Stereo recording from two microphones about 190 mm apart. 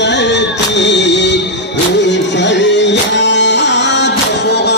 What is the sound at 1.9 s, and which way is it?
Music, 65° left (ahead or behind).